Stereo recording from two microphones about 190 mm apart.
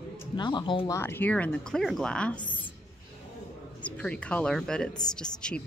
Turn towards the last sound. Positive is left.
turn(degrees=5)  # may be behind; listen again after turning